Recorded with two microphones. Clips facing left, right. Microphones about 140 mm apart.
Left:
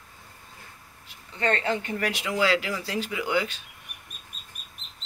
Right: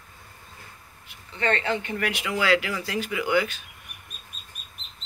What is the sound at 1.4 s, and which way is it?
Speech, 40° left (ahead or behind).